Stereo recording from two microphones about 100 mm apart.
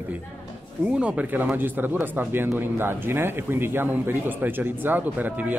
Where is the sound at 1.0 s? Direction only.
15° right (ahead or behind).